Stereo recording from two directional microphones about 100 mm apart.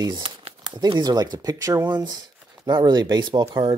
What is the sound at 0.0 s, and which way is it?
Crumpling, 55° right (ahead or behind).